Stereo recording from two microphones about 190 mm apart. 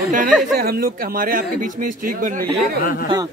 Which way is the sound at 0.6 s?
50° right (ahead or behind).